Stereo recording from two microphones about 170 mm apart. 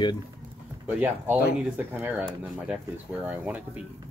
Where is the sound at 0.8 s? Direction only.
10° right (ahead or behind).